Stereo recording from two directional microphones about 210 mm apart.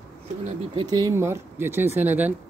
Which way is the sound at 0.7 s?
20° right (ahead or behind).